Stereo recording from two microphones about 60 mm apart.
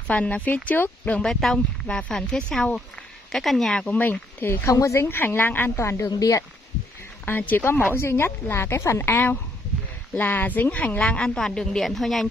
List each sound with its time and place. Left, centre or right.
0.0 s speech: left
1.2 s a woman's voice: centre
3.8 s speech: left
4.7 s speech: left
5.0 s speech: left
5.8 s speech: left
6.1 s speech: left
7.2 s a woman's voice: left; by 12.3 s centre